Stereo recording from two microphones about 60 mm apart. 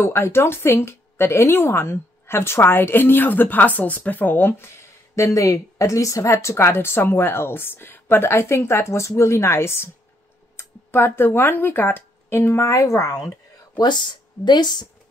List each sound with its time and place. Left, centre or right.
0.0 s a woman's voice: left
5.1 s a woman's voice: left